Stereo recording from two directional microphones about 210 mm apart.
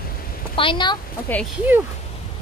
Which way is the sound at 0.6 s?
25° left (ahead or behind).